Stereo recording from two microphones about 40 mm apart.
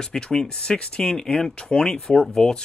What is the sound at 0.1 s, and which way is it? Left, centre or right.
Speech, centre.